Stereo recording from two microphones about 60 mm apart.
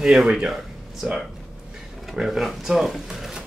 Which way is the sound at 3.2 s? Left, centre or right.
Centre.